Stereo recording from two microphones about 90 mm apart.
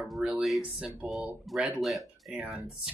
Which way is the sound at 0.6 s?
10° right (ahead or behind).